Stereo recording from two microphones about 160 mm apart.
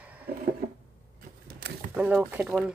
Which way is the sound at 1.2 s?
70° right (ahead or behind).